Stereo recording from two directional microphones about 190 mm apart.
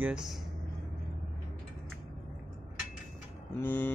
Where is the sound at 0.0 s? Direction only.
5° right (ahead or behind).